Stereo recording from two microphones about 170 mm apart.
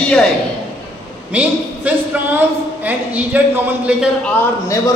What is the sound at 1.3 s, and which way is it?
A man's voice, 5° right (ahead or behind).